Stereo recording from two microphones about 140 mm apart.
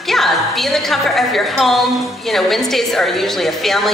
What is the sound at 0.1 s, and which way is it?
A woman's voice, centre (ahead or behind).